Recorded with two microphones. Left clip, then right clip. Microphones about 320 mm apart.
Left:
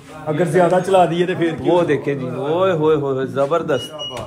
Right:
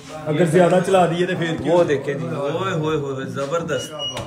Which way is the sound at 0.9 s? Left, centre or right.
Centre.